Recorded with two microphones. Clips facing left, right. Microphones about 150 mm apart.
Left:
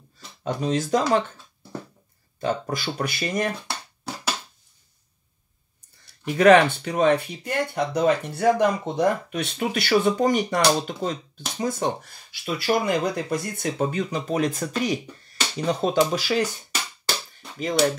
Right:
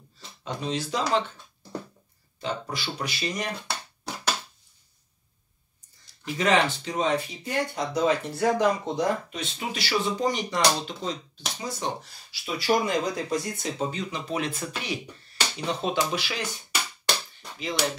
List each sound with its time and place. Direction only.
0.4 s speech: 50° left (ahead or behind)
2.4 s speech: 45° left (ahead or behind)
6.0 s speech: 60° left (ahead or behind); by 16.4 s 40° left (ahead or behind)
17.6 s speech: 45° left (ahead or behind)